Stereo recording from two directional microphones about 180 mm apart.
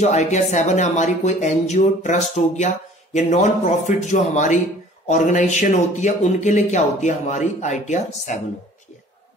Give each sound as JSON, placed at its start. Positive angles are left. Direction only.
{"t": 0.0, "sound": "speech", "side_deg": 40}